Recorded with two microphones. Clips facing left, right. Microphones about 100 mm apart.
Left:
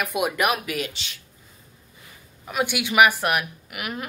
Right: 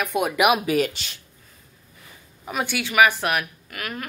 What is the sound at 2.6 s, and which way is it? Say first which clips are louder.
Speech: left 1 dB; 15° left (ahead or behind).